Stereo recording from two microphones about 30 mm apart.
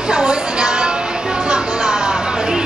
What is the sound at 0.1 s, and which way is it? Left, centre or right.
Music, right.